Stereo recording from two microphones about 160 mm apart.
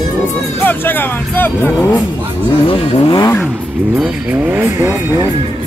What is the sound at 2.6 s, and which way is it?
Vehicle, 25° left (ahead or behind).